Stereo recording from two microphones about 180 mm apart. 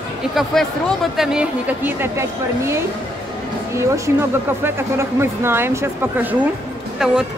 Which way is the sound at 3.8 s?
15° right (ahead or behind).